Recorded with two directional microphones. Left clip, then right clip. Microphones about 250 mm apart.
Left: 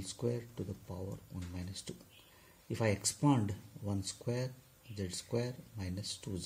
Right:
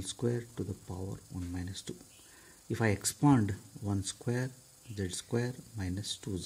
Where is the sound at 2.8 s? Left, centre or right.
Right.